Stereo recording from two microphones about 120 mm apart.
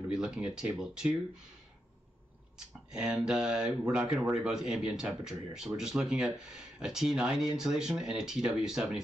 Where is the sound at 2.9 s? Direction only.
5° right (ahead or behind).